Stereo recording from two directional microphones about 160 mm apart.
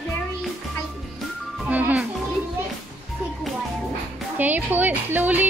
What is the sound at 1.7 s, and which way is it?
Music, 10° right (ahead or behind).